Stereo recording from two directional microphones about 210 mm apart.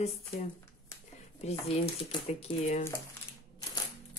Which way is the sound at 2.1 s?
30° left (ahead or behind).